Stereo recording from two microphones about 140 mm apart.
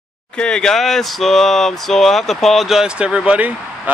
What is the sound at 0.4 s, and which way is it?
Speech, 5° left (ahead or behind).